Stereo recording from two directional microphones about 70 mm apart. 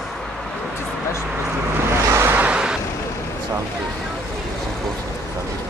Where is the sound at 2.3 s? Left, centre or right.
Centre.